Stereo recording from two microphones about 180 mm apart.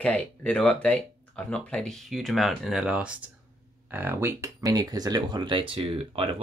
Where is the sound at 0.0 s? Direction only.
5° left (ahead or behind).